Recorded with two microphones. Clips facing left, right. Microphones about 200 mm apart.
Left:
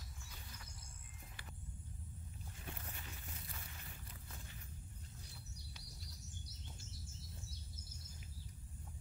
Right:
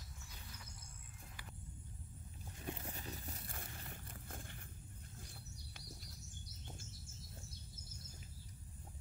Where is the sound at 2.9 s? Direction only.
35° right (ahead or behind).